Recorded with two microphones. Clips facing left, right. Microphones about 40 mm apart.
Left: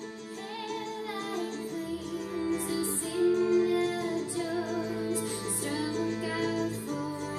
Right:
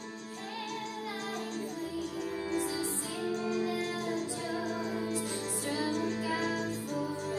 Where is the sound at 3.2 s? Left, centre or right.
Left.